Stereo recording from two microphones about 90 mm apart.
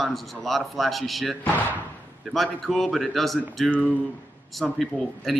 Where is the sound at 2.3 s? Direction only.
Centre (ahead or behind).